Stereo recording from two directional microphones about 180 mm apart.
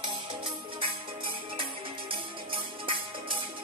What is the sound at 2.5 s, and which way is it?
Music, 30° right (ahead or behind).